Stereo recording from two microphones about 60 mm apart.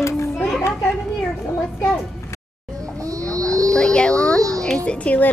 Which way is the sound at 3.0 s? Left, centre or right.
Right.